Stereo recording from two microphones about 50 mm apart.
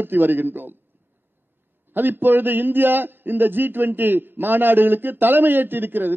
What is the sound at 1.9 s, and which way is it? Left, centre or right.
A man's voice, right.